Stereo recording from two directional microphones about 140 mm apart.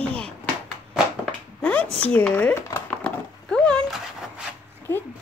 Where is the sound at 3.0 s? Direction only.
5° left (ahead or behind).